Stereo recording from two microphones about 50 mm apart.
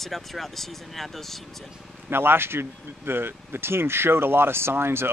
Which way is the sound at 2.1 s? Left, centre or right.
Right.